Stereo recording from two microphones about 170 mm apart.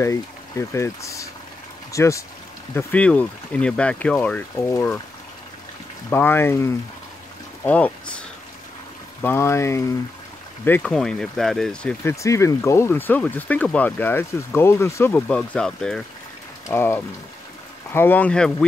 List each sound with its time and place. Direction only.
0.0 s speech: 15° left (ahead or behind)
6.0 s speech: 10° left (ahead or behind)
9.2 s speech: 15° left (ahead or behind)
16.6 s speech: 15° left (ahead or behind)